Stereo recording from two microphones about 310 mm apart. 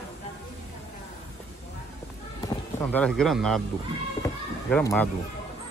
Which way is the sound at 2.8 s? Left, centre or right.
Centre.